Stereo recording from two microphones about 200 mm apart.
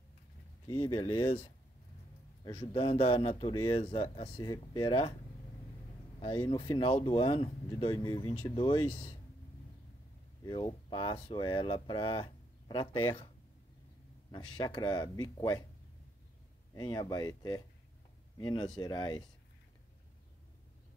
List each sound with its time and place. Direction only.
0.7 s speech: 25° left (ahead or behind)
6.1 s speech: 25° left (ahead or behind)
10.4 s speech: 20° left (ahead or behind)
14.6 s speech: 20° left (ahead or behind)
16.7 s speech: 20° left (ahead or behind)